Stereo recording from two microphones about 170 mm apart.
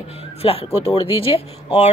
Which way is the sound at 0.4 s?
35° left (ahead or behind).